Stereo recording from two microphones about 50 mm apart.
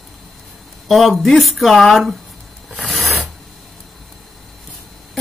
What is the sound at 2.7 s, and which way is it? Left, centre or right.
Filing, centre.